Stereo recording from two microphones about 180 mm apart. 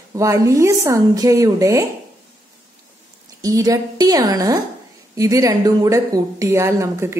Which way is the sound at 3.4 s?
20° right (ahead or behind).